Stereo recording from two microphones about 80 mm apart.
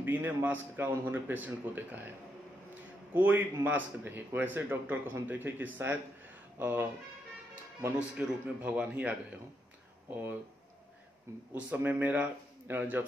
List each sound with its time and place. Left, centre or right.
0.0 s speech: right
3.2 s speech: right
8.2 s speech: centre
11.5 s speech: centre